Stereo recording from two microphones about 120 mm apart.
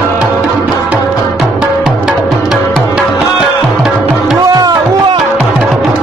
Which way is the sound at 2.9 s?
5° right (ahead or behind).